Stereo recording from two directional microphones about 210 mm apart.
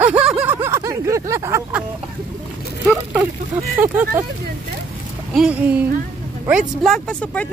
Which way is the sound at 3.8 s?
10° right (ahead or behind).